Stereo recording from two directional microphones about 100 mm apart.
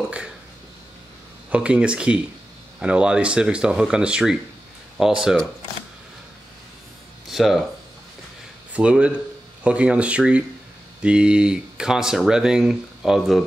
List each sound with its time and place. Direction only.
1.5 s speech: 10° right (ahead or behind)
7.2 s speech: centre (ahead or behind)
8.7 s speech: 10° right (ahead or behind)